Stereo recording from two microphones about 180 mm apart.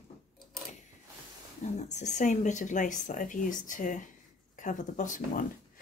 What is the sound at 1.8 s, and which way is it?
Speech, 40° left (ahead or behind).